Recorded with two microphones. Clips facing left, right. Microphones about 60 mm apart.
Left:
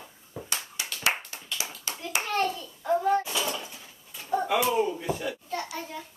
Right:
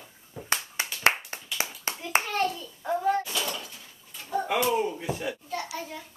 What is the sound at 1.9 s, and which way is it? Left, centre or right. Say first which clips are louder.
Hands: right 3 dB; right.